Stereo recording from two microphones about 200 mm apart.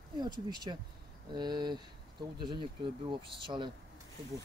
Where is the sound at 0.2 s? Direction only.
20° right (ahead or behind).